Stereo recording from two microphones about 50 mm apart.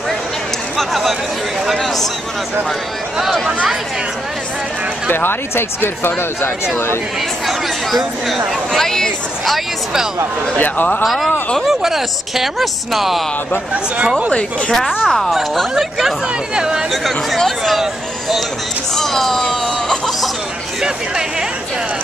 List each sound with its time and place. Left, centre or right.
1.7 s a woman's voice: centre
5.1 s speech: left
8.3 s speech: centre
10.6 s a man's voice: left
11.1 s a woman's voice: centre
13.9 s speech: centre
15.0 s a woman's voice: centre
16.9 s a woman's voice: centre
18.9 s a woman's voice: centre